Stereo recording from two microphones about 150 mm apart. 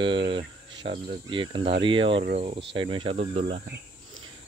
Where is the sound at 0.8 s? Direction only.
60° right (ahead or behind).